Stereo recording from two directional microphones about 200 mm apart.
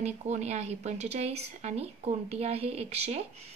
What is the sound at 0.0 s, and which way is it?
Speech, 35° right (ahead or behind).